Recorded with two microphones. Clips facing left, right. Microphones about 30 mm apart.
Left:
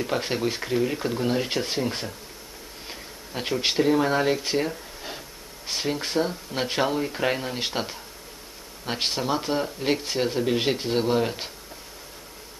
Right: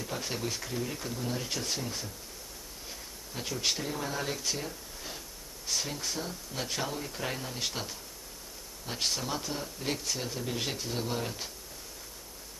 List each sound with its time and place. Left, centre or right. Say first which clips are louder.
0.0 s speech: left 10 dB; left